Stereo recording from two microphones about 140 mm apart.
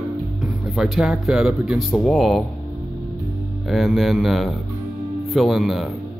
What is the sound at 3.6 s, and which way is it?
Speech, centre (ahead or behind).